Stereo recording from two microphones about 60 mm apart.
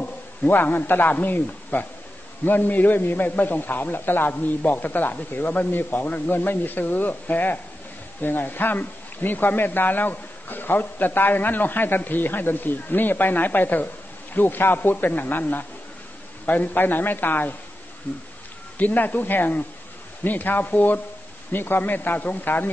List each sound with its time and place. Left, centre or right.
0.0 s a man's voice: left
18.8 s a man's voice: left